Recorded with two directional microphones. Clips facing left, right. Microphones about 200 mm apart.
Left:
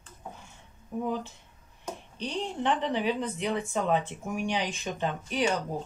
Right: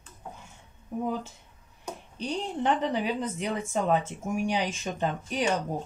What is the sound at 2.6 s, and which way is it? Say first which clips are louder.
Speech: right 1 dB; 40° right (ahead or behind).